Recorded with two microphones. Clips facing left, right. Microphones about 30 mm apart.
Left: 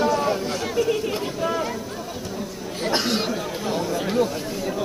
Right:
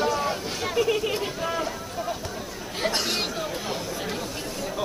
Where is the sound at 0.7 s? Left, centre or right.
Centre.